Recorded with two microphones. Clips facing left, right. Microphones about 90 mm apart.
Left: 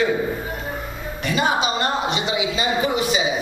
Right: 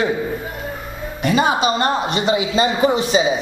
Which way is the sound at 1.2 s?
40° right (ahead or behind).